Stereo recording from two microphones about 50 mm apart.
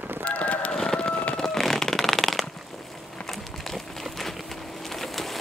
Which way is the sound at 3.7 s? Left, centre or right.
Centre.